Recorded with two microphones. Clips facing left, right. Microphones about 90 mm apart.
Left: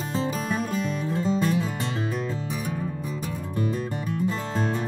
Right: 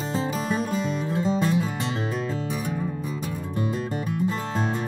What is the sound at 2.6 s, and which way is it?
Music, 20° right (ahead or behind).